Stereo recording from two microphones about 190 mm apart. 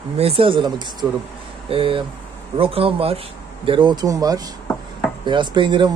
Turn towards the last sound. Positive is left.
turn(degrees=-25)  # may be behind; listen again after turning